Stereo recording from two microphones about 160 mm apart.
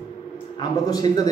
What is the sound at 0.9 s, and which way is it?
Speech, 25° left (ahead or behind).